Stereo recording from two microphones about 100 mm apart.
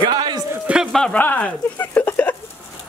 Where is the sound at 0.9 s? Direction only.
5° left (ahead or behind).